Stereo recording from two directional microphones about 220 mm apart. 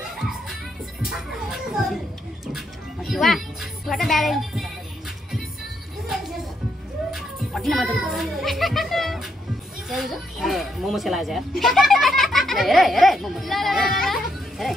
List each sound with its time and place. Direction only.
0.2 s music: centre (ahead or behind)
1.0 s a sound: centre (ahead or behind)
2.4 s music: centre (ahead or behind)
7.2 s a child's voice: centre (ahead or behind)